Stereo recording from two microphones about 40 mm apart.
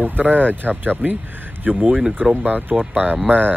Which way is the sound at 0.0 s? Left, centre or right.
Right.